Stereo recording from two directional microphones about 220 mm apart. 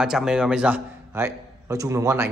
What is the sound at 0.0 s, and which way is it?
A man's voice, centre (ahead or behind).